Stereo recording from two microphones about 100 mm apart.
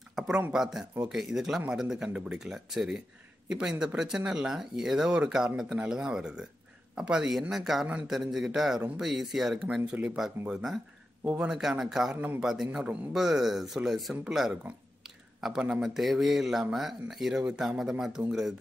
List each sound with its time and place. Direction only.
0.2 s a sound: centre (ahead or behind)
0.5 s a man's voice: 5° right (ahead or behind)
12.2 s speech: 15° right (ahead or behind)
12.4 s a man's voice: 5° right (ahead or behind)